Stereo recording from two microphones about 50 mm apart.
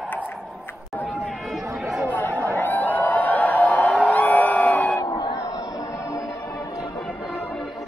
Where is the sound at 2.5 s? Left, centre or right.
Left.